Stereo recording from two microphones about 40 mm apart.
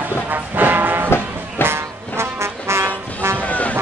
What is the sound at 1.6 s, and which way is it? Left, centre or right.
Music, right.